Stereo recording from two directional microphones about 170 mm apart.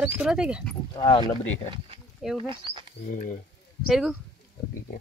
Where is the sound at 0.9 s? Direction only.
30° left (ahead or behind).